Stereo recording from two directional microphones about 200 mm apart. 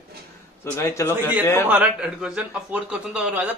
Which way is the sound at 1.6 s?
5° right (ahead or behind).